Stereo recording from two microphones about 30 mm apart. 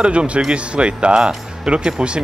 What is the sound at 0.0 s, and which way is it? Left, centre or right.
A man's voice, right.